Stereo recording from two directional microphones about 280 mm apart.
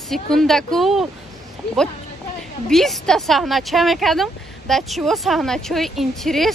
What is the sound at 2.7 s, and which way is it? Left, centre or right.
Speech, centre.